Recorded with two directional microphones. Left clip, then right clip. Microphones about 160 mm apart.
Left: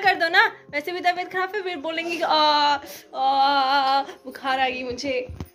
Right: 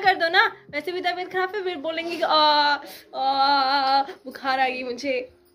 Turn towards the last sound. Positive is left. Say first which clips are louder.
# even
turn(degrees=-15)  # may be behind; listen again after turning